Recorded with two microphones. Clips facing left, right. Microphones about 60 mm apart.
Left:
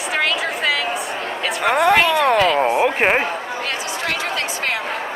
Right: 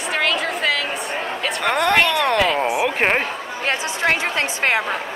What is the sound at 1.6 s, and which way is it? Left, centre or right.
Speech, centre.